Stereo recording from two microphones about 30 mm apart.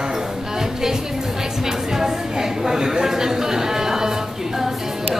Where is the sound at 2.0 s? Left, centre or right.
Centre.